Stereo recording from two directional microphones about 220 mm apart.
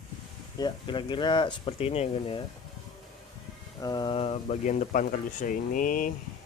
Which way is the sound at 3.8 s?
20° left (ahead or behind).